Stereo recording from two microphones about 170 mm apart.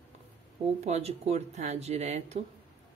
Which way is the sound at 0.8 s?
40° right (ahead or behind).